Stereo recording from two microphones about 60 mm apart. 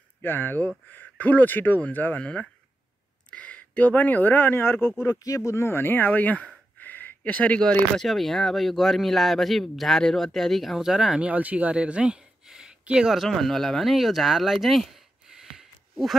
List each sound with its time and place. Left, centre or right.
0.2 s speech: left
2.1 s speech: centre; by 4.9 s left
5.2 s speech: left
6.8 s a sound: left
7.6 s speech: centre
11.2 s speech: right
13.1 s speech: centre